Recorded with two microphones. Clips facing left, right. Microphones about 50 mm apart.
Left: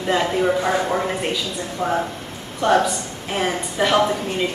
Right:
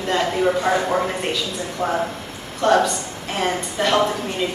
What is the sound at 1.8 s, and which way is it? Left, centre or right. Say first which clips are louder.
A woman's voice: even; centre.